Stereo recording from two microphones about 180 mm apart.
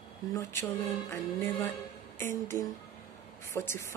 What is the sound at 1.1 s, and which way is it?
Speech, 15° left (ahead or behind).